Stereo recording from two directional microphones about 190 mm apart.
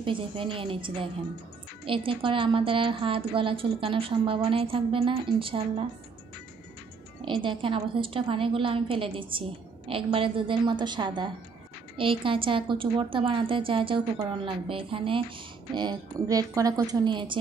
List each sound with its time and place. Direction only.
0.0 s a woman's voice: 25° right (ahead or behind)
7.2 s a woman's voice: 25° right (ahead or behind)